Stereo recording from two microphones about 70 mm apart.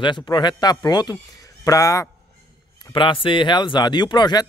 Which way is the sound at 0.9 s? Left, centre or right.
Left.